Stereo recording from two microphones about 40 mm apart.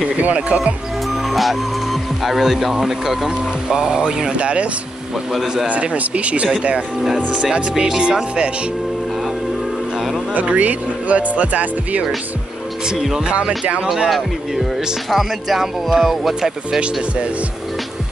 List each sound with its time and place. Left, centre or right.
0.2 s speech: right
1.3 s speech: centre; by 4.6 s right
5.7 s speech: right; by 8.5 s centre
10.4 s speech: right
13.8 s speech: centre